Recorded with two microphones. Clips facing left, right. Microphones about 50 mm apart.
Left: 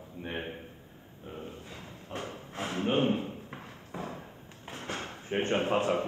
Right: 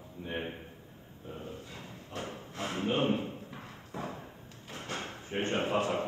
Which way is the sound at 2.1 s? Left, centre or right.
Left.